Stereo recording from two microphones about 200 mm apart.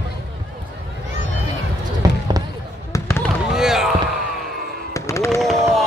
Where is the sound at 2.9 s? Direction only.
10° left (ahead or behind).